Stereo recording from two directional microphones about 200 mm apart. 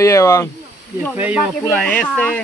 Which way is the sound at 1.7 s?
5° left (ahead or behind).